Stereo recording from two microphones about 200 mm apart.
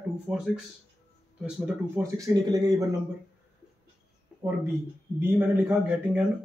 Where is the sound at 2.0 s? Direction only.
15° right (ahead or behind).